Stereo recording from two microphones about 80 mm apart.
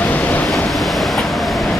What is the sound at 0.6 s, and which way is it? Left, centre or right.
Vehicle, centre.